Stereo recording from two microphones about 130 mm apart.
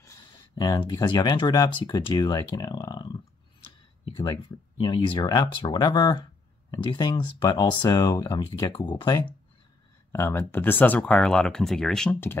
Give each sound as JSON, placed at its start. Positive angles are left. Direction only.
{"t": 0.6, "sound": "speech", "side_deg": 30}
{"t": 4.2, "sound": "speech", "side_deg": 35}
{"t": 10.1, "sound": "speech", "side_deg": 20}